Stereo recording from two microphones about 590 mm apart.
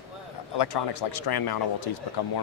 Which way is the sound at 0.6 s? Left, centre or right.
Left.